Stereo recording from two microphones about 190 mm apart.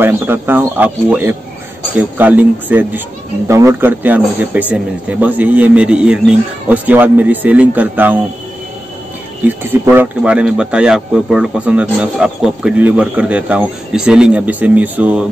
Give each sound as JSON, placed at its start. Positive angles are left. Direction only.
{"t": 0.0, "sound": "speech", "side_deg": -10}
{"t": 9.4, "sound": "speech", "side_deg": -10}